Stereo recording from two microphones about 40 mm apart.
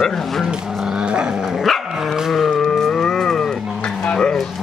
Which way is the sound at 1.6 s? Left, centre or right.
Centre.